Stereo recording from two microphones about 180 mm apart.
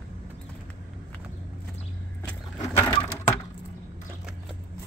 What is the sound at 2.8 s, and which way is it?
Crushing, 30° left (ahead or behind).